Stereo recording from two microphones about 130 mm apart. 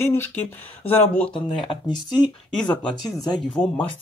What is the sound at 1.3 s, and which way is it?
Speech, 40° left (ahead or behind).